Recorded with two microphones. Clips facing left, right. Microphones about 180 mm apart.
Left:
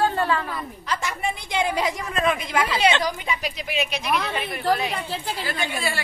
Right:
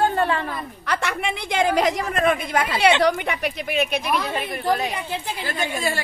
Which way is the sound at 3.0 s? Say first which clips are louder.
Right 6 dB; 60° right (ahead or behind).